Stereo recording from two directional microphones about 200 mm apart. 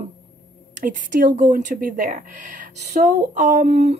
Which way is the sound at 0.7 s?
40° right (ahead or behind).